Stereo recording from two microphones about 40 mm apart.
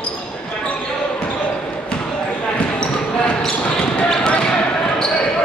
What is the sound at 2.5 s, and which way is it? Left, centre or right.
Basketball bounce, left.